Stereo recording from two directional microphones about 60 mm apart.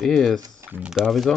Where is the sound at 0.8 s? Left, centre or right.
Centre.